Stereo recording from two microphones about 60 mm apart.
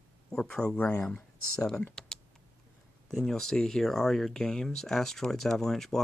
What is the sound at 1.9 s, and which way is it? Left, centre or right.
Typing, centre.